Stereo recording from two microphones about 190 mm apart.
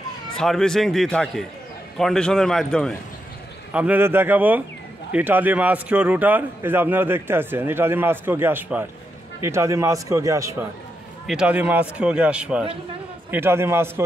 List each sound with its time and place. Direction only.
0.4 s a man's voice: centre (ahead or behind)
3.7 s a man's voice: 10° right (ahead or behind)
11.2 s a man's voice: 5° right (ahead or behind)